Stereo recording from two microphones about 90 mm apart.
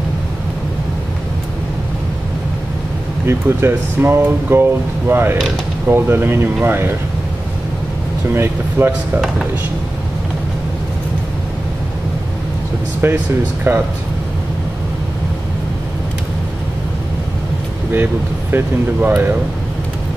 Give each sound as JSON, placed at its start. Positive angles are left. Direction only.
{"t": 3.3, "sound": "speech", "side_deg": -25}
{"t": 8.3, "sound": "speech", "side_deg": -25}
{"t": 13.0, "sound": "speech", "side_deg": -25}
{"t": 18.9, "sound": "speech", "side_deg": -20}